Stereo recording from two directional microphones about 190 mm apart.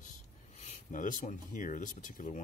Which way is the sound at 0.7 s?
40° left (ahead or behind).